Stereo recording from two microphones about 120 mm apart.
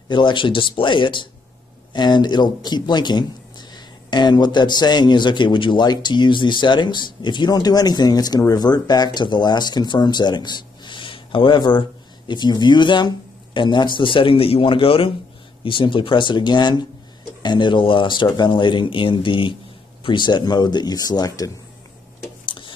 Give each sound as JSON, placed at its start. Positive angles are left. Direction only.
{"t": 0.1, "sound": "a man's voice", "side_deg": 40}